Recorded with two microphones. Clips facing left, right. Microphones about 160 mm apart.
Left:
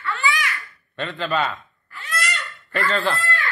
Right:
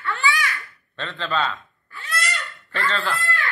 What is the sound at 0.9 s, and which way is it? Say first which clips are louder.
Speech: left 2 dB; 5° left (ahead or behind).